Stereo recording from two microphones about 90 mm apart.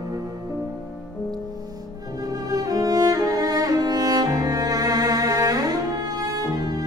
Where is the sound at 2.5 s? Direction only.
45° right (ahead or behind).